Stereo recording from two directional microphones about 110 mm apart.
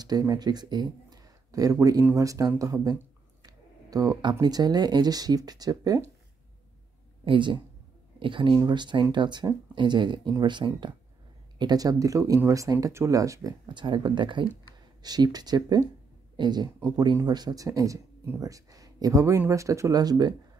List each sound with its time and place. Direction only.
0.0 s speech: 35° right (ahead or behind)
7.2 s speech: 45° right (ahead or behind); by 13.6 s 30° right (ahead or behind)
13.7 s speech: 45° right (ahead or behind)